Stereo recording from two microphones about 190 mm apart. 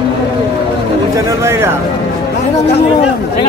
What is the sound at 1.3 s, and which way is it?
Speech, 15° right (ahead or behind).